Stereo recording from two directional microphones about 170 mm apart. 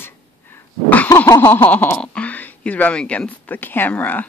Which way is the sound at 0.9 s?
10° left (ahead or behind).